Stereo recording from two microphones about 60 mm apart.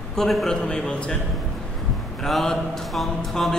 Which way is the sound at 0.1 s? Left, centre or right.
Centre.